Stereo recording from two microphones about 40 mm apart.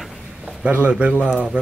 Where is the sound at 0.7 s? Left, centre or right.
Right.